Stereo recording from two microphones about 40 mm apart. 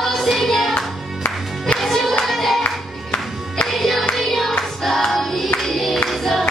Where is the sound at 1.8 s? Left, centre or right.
Centre.